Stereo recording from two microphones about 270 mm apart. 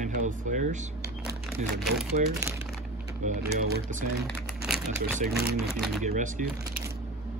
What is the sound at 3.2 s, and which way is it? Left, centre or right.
Speech, right.